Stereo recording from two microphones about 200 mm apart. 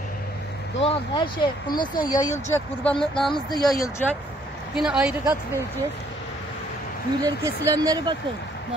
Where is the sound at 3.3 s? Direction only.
20° left (ahead or behind).